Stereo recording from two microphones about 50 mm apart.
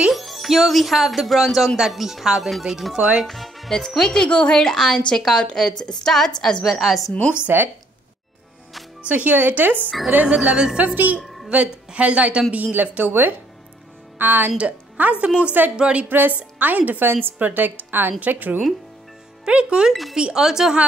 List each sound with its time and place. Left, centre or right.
0.1 s speech: centre
4.3 s a woman's voice: left
4.6 s a woman's voice: centre
6.6 s a woman's voice: centre
7.4 s a woman's voice: right
9.0 s a woman's voice: right
10.0 s a woman's voice: right
14.1 s a woman's voice: right
14.6 s a woman's voice: right
16.1 s a woman's voice: right
19.4 s speech: centre
19.9 s a woman's voice: centre
20.2 s speech: centre